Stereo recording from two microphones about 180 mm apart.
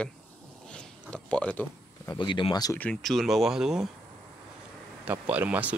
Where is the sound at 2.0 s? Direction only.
25° left (ahead or behind).